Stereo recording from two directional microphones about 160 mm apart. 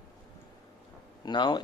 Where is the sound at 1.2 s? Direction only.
25° left (ahead or behind).